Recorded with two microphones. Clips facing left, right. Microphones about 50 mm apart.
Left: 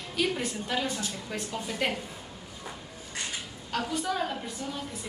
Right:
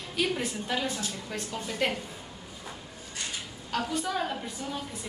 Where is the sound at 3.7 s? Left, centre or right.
Centre.